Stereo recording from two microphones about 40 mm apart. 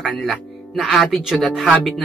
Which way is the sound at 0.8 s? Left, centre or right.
Centre.